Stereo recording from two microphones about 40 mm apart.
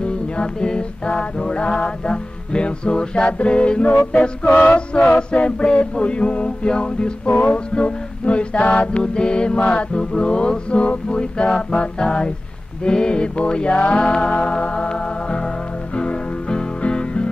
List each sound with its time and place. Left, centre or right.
0.0 s music: left
3.3 s mantra: left
4.5 s a sound: left
4.7 s mantra: left
7.5 s music: left
9.9 s mantra: left
14.3 s music: left